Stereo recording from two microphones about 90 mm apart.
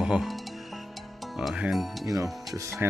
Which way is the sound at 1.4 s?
5° right (ahead or behind).